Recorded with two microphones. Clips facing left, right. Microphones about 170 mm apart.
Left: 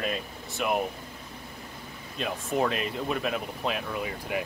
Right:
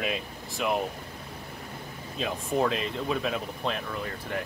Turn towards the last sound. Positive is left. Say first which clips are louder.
# left 2 dB
turn(degrees=10)  # may be behind; listen again after turning